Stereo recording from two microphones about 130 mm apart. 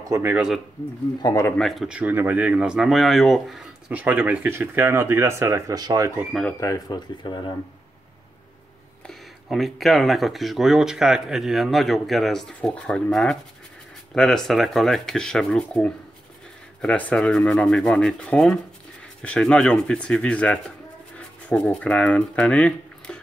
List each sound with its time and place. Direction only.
0.1 s speech: 15° right (ahead or behind)
1.2 s speech: 25° left (ahead or behind)
1.6 s speech: centre (ahead or behind)
2.0 s speech: 15° right (ahead or behind)
4.0 s speech: 10° right (ahead or behind); by 6.1 s 30° right (ahead or behind)
6.6 s speech: 30° left (ahead or behind)
9.0 s speech: centre (ahead or behind)